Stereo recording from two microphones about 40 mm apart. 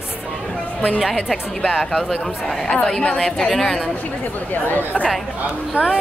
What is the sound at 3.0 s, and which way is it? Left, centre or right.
Speech, left.